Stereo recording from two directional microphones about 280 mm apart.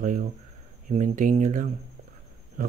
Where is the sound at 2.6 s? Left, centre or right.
Right.